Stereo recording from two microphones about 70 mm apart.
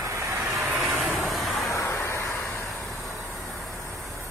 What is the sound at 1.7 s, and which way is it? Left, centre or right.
Vehicle, left.